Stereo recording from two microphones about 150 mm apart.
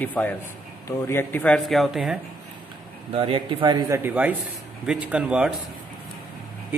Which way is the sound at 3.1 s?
35° right (ahead or behind).